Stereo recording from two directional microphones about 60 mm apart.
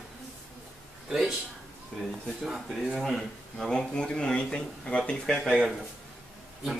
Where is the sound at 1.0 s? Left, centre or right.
Centre.